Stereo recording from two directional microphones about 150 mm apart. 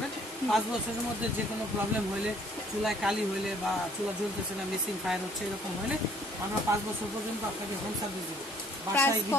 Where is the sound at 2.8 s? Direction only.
5° right (ahead or behind).